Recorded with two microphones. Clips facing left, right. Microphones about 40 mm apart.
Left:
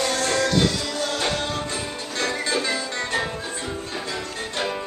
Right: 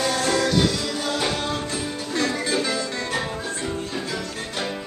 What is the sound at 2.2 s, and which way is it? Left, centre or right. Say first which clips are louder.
Music: left 1 dB; left.